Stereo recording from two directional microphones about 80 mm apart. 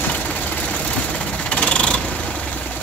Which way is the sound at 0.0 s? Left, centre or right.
Centre.